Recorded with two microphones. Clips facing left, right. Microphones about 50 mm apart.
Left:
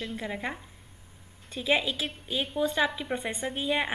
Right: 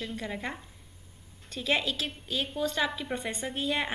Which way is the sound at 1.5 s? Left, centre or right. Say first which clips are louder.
Left 2 dB; centre.